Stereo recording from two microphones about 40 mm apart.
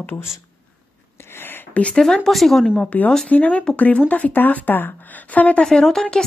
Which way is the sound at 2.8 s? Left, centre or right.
Left.